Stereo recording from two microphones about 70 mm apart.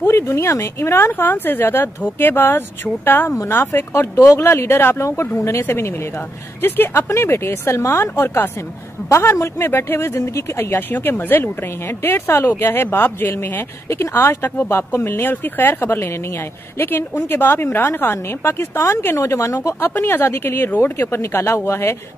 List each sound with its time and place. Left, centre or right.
0.0 s speech: left
20.0 s speech: left